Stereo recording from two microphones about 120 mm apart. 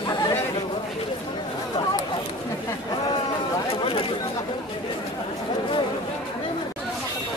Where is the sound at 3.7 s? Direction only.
50° left (ahead or behind).